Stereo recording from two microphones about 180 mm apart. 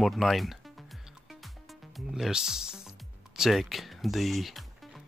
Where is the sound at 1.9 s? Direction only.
Centre (ahead or behind).